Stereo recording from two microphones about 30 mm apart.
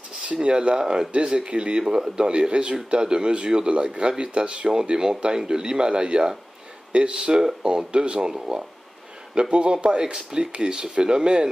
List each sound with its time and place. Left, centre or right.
0.2 s speech: right
1.8 s speech: centre
2.2 s speech: right
3.7 s speech: right
7.3 s speech: right
7.9 s speech: right
9.5 s speech: right